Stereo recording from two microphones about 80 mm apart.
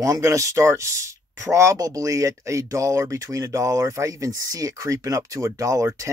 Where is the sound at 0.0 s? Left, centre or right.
Right.